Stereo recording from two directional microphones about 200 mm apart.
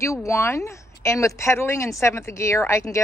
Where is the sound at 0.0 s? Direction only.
15° left (ahead or behind).